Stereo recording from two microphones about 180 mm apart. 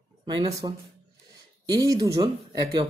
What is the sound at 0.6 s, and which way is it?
Speech, 25° right (ahead or behind).